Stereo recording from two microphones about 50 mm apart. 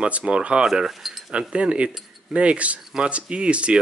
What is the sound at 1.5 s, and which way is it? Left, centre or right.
A man's voice, right.